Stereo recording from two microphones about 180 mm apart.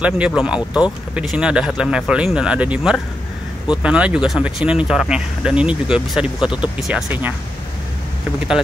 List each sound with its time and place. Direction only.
0.0 s speech: 5° right (ahead or behind)